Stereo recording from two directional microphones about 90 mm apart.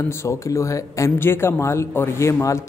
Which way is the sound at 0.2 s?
35° left (ahead or behind).